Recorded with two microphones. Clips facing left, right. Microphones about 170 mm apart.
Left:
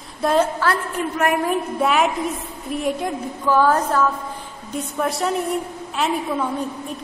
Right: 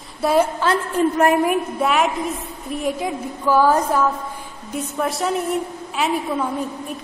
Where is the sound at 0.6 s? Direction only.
25° right (ahead or behind).